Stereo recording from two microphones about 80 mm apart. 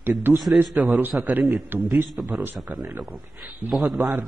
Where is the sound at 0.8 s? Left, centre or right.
Right.